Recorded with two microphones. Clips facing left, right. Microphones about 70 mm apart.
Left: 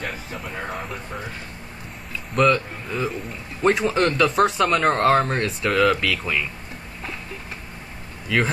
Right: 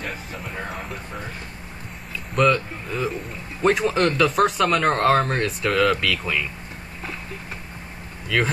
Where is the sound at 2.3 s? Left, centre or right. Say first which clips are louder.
Left 1 dB; centre.